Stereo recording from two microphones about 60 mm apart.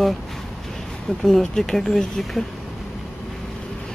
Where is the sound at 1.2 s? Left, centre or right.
Centre.